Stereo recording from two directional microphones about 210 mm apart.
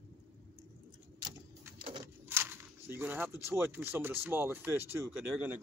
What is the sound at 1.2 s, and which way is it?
Typewriter, 20° right (ahead or behind).